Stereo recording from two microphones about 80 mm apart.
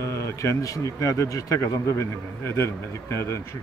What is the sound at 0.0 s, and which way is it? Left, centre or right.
A man's voice, left.